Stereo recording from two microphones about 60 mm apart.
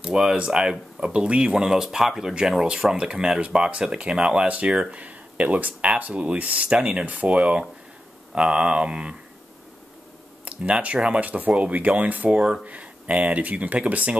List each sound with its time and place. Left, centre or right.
0.0 s speech: centre
10.4 s speech: right
12.4 s speech: centre
12.6 s speech: right